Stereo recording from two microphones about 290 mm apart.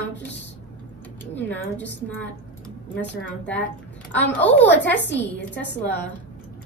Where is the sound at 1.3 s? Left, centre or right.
Centre.